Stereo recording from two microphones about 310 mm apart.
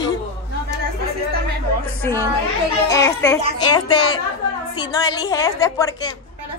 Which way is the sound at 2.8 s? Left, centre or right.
Centre.